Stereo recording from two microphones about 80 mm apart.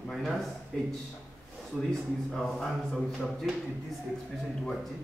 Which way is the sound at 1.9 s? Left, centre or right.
Centre.